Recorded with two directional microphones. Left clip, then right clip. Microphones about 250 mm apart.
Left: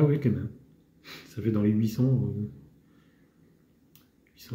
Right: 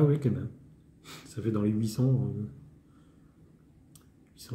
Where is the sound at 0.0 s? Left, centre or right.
Centre.